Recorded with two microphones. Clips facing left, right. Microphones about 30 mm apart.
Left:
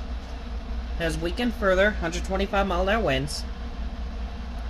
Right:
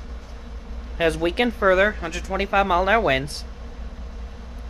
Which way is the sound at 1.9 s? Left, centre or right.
Centre.